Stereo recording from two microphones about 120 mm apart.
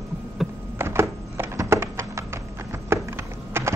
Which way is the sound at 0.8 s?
20° right (ahead or behind).